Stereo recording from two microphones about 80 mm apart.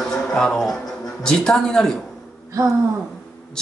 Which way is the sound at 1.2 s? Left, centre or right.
Centre.